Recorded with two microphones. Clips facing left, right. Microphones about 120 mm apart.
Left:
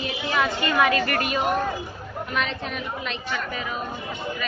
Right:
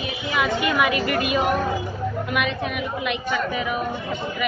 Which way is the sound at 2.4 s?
15° right (ahead or behind).